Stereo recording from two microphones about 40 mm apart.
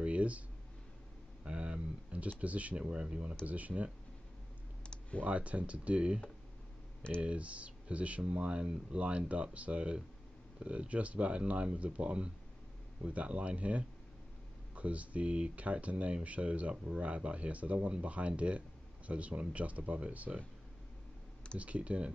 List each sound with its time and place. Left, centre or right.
0.0 s a sound: right
1.4 s a sound: right
2.2 s speech: right
2.8 s speech: right
3.4 s speech: right
4.8 s computer keyboard: left
5.2 s speech: right
21.5 s speech: right